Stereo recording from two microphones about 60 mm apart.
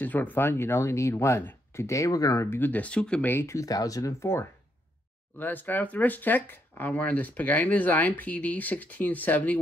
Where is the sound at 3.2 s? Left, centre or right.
Left.